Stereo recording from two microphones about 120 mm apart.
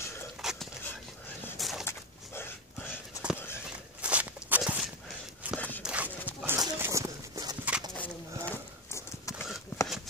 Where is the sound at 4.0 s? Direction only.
10° right (ahead or behind).